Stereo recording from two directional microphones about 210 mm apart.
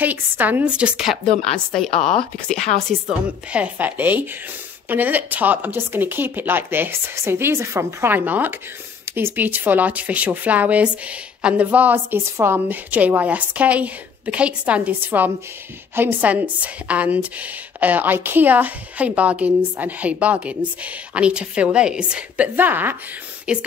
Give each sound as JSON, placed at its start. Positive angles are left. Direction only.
{"t": 0.0, "sound": "a woman's voice", "side_deg": -10}
{"t": 3.3, "sound": "a woman's voice", "side_deg": -5}